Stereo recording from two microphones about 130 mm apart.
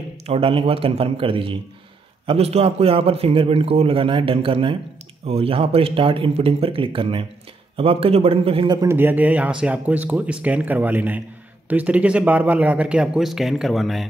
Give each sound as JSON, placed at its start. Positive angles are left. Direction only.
{"t": 0.3, "sound": "a man's voice", "side_deg": -45}
{"t": 8.8, "sound": "speech", "side_deg": -15}